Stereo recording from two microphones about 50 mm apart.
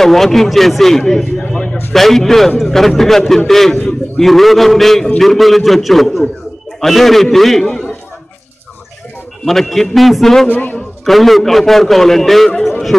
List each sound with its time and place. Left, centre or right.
0.0 s a man's voice: centre
4.3 s a man's voice: centre
9.4 s a man's voice: centre
10.5 s a man's voice: left
11.1 s a man's voice: centre